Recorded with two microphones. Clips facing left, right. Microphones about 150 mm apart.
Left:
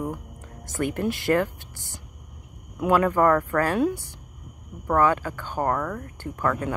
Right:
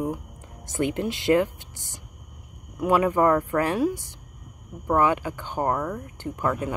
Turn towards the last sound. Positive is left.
turn(degrees=-15)  # may be behind; listen again after turning